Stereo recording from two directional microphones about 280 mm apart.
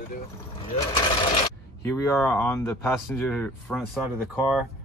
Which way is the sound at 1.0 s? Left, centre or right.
Centre.